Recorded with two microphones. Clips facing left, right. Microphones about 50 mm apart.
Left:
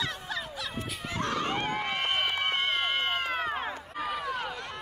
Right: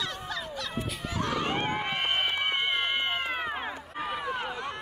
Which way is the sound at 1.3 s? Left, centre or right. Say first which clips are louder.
Right 1 dB; right.